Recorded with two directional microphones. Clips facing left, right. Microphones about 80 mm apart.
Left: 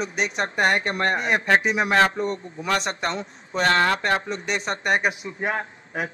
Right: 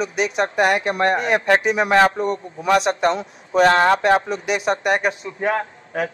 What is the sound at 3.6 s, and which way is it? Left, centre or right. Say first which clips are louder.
Speech: right 6 dB; right.